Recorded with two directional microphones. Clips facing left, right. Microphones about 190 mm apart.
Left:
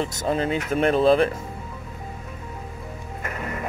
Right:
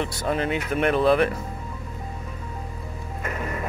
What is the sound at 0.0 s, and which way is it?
Speech, 45° left (ahead or behind).